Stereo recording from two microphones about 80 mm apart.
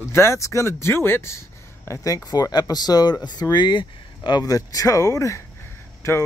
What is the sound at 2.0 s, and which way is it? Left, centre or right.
Speech, left.